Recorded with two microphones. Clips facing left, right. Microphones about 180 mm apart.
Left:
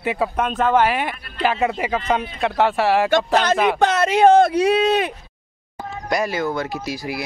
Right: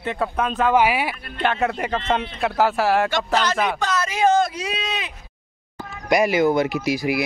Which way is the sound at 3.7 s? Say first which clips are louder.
Left 7 dB; 60° left (ahead or behind).